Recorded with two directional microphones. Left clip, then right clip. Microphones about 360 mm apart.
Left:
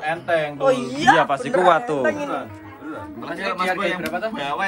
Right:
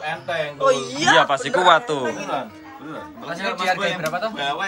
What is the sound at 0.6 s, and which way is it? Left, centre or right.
Speech, left.